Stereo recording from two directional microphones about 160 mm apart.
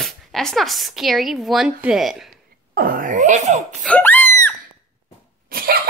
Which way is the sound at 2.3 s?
65° right (ahead or behind).